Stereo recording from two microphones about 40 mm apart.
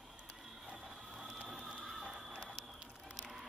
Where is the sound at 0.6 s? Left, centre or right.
Centre.